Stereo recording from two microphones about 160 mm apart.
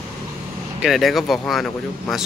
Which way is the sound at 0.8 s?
Centre (ahead or behind).